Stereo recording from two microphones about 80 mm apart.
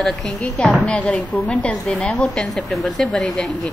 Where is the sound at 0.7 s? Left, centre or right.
Centre.